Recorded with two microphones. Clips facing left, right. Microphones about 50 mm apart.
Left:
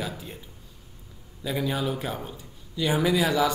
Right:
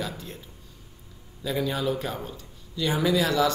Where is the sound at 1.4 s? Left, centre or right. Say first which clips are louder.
Right 1 dB; centre.